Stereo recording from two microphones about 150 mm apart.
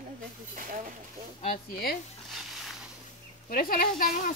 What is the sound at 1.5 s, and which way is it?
Speech, 90° left.